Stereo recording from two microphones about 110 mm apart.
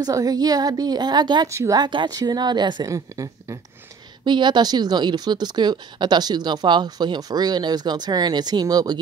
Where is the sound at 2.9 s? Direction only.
30° right (ahead or behind).